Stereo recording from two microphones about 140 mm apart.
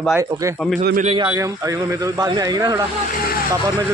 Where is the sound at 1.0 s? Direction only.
35° right (ahead or behind).